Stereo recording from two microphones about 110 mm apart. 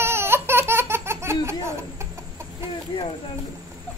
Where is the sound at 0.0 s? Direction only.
20° right (ahead or behind).